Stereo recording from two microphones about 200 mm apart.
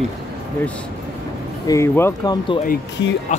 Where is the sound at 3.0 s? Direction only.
65° left (ahead or behind).